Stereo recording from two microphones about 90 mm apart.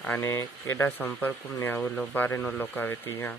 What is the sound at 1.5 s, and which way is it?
Speech, 35° left (ahead or behind).